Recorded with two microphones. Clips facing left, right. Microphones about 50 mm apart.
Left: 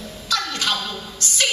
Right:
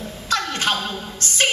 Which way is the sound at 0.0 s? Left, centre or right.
Right.